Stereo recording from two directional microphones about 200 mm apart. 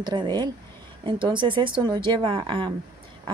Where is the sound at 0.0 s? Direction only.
20° right (ahead or behind).